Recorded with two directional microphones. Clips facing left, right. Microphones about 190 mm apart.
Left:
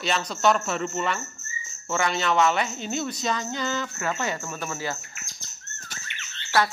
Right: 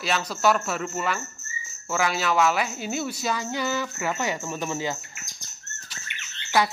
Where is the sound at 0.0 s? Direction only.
5° right (ahead or behind).